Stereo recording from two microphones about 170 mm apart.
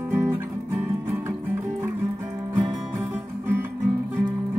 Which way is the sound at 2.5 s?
25° right (ahead or behind).